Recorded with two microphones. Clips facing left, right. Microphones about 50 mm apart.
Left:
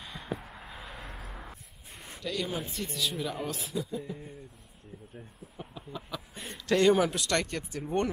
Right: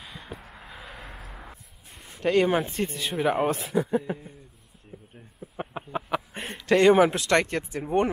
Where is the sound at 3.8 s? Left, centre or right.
Right.